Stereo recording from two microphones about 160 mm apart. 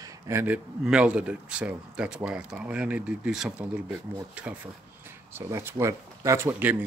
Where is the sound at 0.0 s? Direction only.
15° right (ahead or behind).